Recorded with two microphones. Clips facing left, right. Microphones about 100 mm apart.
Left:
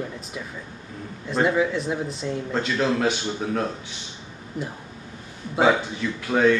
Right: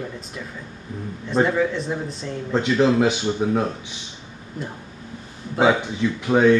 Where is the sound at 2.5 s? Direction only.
15° right (ahead or behind).